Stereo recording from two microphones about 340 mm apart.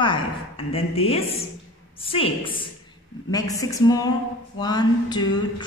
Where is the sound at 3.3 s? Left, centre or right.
Centre.